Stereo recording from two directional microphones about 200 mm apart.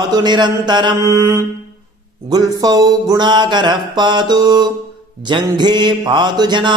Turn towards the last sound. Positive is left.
turn(degrees=-25)  # may be behind; listen again after turning